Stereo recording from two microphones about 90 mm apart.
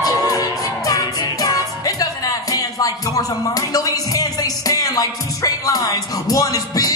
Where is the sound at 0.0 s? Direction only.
40° left (ahead or behind).